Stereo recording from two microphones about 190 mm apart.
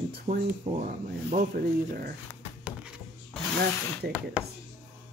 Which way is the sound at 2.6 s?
5° right (ahead or behind).